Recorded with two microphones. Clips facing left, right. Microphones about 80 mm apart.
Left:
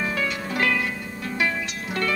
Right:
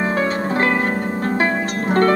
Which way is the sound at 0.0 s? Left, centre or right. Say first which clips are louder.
Right 7 dB; right.